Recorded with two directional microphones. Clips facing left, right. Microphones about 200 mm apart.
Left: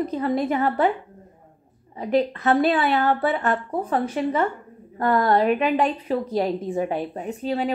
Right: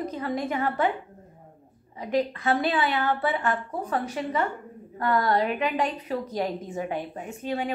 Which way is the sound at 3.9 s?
30° left (ahead or behind).